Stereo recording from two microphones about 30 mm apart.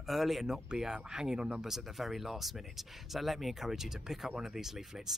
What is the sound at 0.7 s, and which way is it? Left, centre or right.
Speech, right.